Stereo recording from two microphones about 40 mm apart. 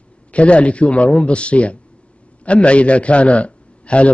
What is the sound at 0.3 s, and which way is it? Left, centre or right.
A man's voice, left.